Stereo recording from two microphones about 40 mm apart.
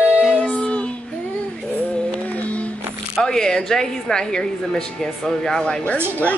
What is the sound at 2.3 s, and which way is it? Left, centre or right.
Music, left.